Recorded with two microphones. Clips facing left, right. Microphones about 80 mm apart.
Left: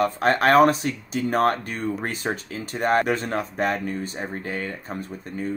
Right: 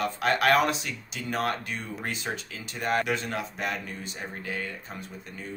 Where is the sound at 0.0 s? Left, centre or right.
Left.